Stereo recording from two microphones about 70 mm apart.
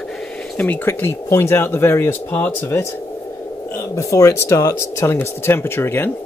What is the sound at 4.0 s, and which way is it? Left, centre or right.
Speech, left.